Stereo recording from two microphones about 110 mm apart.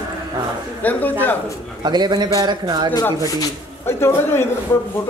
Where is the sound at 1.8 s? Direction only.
40° right (ahead or behind).